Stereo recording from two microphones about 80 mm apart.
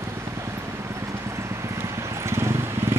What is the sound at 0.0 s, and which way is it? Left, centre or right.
Vehicle, right.